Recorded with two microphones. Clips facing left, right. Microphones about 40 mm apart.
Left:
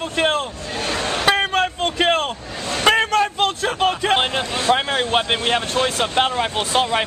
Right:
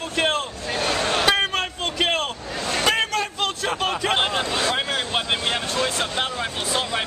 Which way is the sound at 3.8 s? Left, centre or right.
Centre.